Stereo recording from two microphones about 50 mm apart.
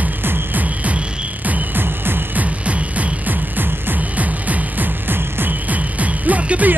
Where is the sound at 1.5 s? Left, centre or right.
Right.